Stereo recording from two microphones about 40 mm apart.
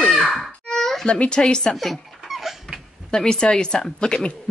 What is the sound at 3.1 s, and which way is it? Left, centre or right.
A woman's voice, centre.